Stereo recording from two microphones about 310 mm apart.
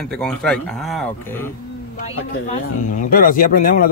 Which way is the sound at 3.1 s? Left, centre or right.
Left.